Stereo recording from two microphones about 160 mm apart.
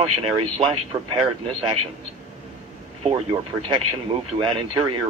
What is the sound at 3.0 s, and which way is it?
Speech, 35° right (ahead or behind).